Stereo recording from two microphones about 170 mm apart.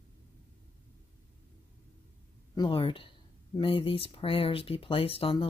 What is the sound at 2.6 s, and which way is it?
Speech, 30° left (ahead or behind).